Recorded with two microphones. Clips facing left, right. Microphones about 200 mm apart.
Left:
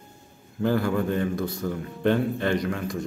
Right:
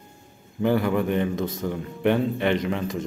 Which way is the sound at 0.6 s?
20° right (ahead or behind).